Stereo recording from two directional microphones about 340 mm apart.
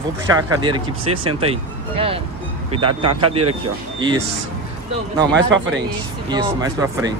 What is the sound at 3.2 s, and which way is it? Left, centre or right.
Speech, centre.